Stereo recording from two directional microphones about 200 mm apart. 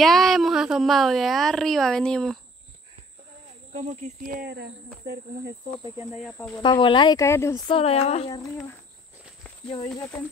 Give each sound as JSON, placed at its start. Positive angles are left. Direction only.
{"t": 0.0, "sound": "a woman's voice", "side_deg": 0}
{"t": 3.7, "sound": "speech", "side_deg": -35}
{"t": 4.5, "sound": "speech", "side_deg": -55}
{"t": 6.3, "sound": "speech", "side_deg": 10}
{"t": 6.6, "sound": "speech", "side_deg": 25}
{"t": 9.9, "sound": "speech", "side_deg": 10}